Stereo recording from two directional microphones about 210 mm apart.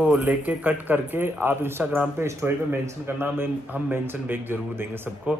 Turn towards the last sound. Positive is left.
turn(degrees=-10)  # may be behind; listen again after turning